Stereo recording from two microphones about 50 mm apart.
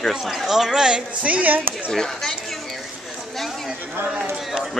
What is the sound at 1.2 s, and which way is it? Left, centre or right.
Speech, right.